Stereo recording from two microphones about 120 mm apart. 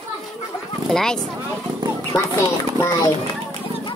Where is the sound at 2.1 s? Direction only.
25° left (ahead or behind).